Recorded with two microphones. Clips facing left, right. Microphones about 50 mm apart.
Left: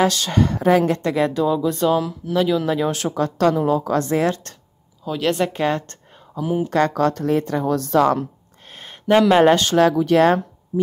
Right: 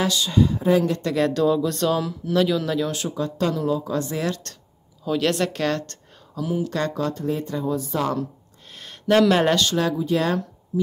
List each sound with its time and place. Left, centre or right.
0.1 s speech: left
0.8 s a woman's voice: left
1.1 s speech: centre
2.6 s speech: left
2.9 s a woman's voice: left
5.0 s speech: centre
6.9 s speech: left
8.7 s a sound: left
9.1 s speech: centre
9.5 s speech: left